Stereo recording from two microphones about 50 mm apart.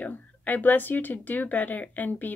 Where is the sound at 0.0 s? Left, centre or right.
Left.